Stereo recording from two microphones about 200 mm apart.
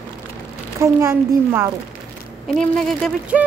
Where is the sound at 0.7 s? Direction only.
15° right (ahead or behind).